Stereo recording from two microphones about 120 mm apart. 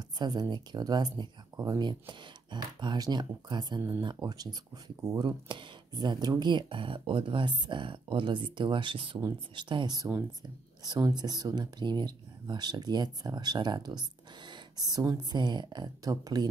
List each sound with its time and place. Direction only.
0.2 s speech: 35° right (ahead or behind)